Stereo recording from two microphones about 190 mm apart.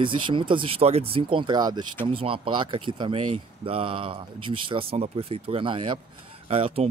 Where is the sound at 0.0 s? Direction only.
25° right (ahead or behind).